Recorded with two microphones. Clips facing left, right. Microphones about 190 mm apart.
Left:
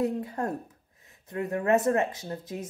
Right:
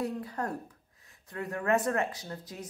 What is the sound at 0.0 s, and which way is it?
A woman's voice, 25° left (ahead or behind).